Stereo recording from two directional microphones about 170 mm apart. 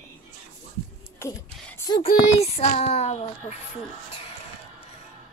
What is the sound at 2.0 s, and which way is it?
Speech, 35° left (ahead or behind).